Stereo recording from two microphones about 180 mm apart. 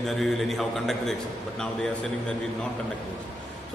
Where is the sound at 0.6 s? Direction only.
Centre (ahead or behind).